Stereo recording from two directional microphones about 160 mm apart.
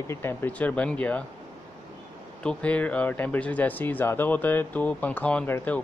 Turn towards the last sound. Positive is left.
turn(degrees=10)  # may be behind; listen again after turning